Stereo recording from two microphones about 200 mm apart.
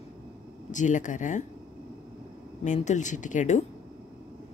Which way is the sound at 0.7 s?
40° left (ahead or behind).